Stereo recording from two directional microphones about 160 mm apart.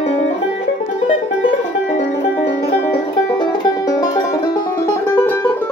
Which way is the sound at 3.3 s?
25° left (ahead or behind).